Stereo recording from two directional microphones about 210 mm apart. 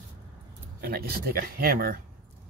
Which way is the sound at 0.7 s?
50° right (ahead or behind).